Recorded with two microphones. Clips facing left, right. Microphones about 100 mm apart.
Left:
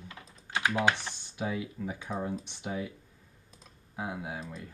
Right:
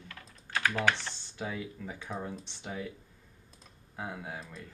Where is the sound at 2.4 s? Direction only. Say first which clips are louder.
Left 4 dB; 15° left (ahead or behind).